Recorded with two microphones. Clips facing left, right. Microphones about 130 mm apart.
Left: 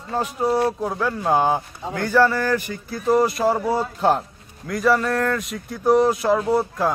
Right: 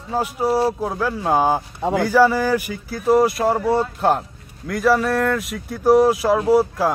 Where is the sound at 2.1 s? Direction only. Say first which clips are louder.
Right 1 dB; 10° right (ahead or behind).